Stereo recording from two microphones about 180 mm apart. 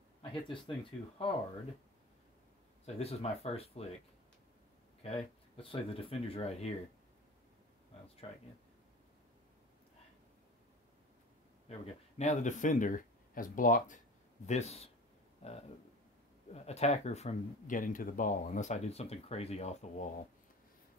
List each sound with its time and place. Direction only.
0.2 s speech: 30° left (ahead or behind)
3.0 s speech: 35° left (ahead or behind)
5.0 s speech: 30° left (ahead or behind)
8.2 s speech: 30° left (ahead or behind)
11.8 s speech: 40° left (ahead or behind)